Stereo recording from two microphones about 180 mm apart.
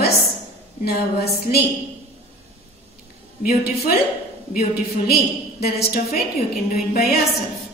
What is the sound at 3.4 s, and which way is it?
Speech, 55° left (ahead or behind).